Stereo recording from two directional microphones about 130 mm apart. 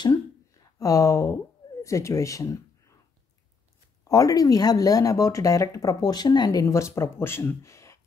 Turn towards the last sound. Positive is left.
turn(degrees=20)  # may be behind; listen again after turning